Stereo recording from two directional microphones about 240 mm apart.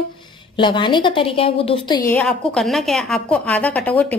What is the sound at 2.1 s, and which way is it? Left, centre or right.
A woman's voice, centre.